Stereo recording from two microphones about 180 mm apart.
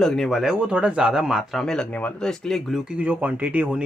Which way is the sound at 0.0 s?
5° left (ahead or behind).